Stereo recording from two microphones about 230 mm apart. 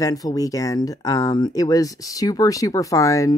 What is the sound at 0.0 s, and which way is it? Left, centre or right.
Speech, centre.